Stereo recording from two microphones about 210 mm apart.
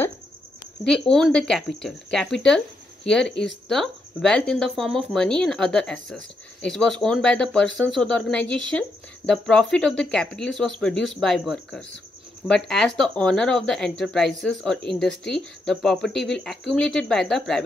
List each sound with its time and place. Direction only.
0.8 s speech: 5° left (ahead or behind)